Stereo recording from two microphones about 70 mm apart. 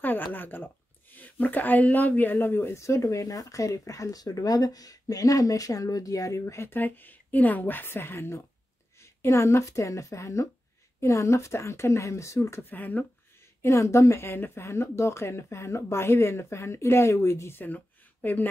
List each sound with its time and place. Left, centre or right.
0.0 s a woman's voice: left
6.7 s a woman's voice: left
12.6 s a woman's voice: left
13.6 s speech: left
17.6 s speech: left